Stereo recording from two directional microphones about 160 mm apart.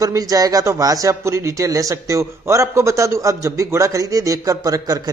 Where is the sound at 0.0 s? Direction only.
20° right (ahead or behind).